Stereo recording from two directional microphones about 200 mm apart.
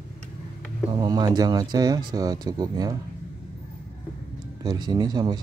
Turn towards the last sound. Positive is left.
turn(degrees=-20)  # may be behind; listen again after turning